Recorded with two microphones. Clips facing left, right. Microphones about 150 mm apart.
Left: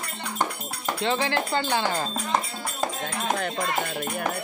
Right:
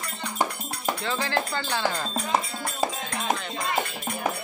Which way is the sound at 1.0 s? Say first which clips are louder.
Left 5 dB; 20° left (ahead or behind).